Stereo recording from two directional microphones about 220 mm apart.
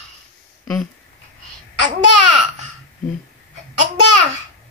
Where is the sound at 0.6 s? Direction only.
Centre (ahead or behind).